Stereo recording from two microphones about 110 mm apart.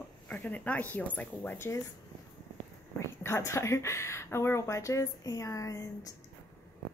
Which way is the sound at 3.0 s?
25° left (ahead or behind).